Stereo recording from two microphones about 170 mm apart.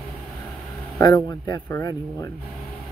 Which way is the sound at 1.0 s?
25° left (ahead or behind).